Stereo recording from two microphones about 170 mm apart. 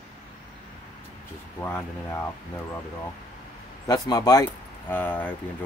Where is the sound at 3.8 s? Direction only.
20° left (ahead or behind).